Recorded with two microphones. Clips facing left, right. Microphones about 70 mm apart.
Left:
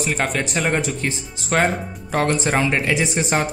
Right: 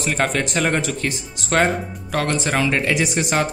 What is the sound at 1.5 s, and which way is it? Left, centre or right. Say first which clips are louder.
Speech: right 1 dB; centre.